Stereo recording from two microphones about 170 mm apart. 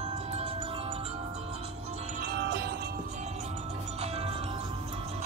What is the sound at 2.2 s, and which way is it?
Music, 65° right (ahead or behind).